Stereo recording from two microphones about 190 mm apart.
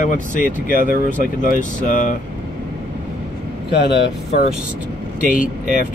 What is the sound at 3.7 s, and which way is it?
Speech, 65° left (ahead or behind).